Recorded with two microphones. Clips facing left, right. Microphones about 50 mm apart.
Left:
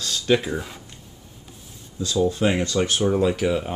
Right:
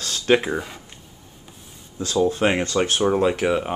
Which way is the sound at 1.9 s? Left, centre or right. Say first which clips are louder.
Right 1 dB; right.